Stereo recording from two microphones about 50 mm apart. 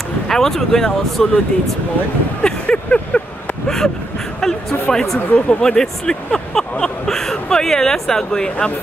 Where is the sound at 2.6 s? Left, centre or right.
Left.